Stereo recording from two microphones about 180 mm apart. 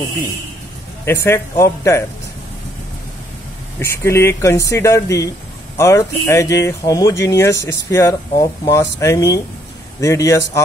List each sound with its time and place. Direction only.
1.0 s speech: 15° left (ahead or behind)
3.8 s speech: 15° left (ahead or behind)